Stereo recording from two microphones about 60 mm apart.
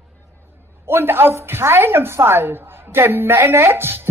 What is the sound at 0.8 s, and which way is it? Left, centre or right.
A woman's voice, right.